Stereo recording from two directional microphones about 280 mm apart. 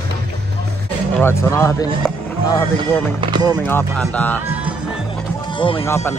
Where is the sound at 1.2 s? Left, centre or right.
Centre.